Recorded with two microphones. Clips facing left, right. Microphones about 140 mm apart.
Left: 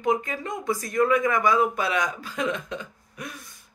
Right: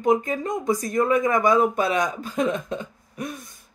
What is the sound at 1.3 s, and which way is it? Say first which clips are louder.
Speech: right 3 dB; 40° right (ahead or behind).